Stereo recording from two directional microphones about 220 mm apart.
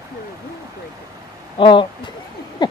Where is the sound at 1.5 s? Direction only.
20° left (ahead or behind).